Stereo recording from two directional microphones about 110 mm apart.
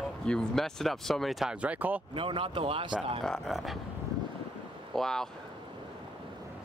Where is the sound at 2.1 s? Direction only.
55° right (ahead or behind).